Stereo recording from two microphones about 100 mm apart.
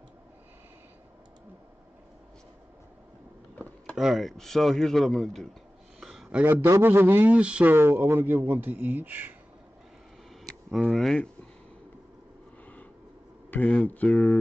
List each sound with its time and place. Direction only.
3.5 s a sound: 10° left (ahead or behind)
3.9 s speech: centre (ahead or behind)
5.9 s a sound: 5° right (ahead or behind)
6.4 s speech: 25° right (ahead or behind)
7.7 s speech: 25° right (ahead or behind)
10.7 s speech: centre (ahead or behind)
13.8 s speech: 15° left (ahead or behind)